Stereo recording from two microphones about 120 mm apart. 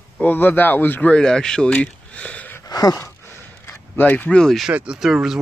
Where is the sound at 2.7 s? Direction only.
30° left (ahead or behind).